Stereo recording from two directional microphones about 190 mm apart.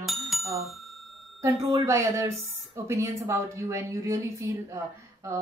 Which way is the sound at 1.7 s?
15° right (ahead or behind).